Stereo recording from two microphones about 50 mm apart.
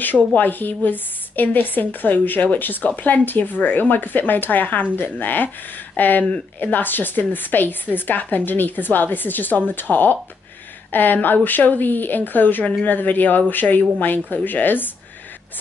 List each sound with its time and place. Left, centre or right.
0.0 s a woman's voice: left